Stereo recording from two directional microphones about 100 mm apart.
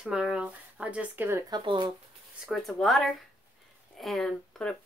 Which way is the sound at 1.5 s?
50° right (ahead or behind).